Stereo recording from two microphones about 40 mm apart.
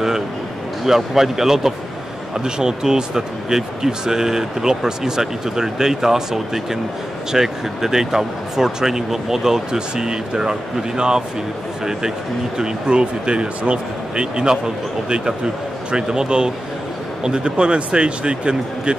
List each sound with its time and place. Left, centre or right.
0.8 s speech: centre
12.5 s speech: right